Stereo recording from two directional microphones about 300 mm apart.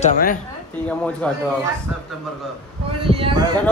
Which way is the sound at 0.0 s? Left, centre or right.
Left.